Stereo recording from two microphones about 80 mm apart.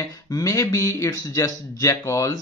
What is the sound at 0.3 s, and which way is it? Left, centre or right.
Speech, left.